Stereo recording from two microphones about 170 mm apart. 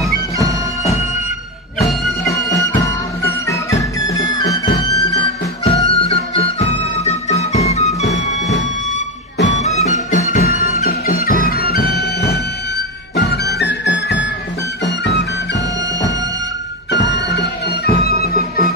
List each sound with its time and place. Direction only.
0.0 s bagpipes: 20° right (ahead or behind)
4.4 s music: 25° left (ahead or behind)
5.6 s music: 35° left (ahead or behind)
10.4 s music: 40° right (ahead or behind)
11.2 s music: 55° left (ahead or behind); by 15.2 s 90° left
16.9 s music: 90° left; by 18.2 s 65° left (ahead or behind)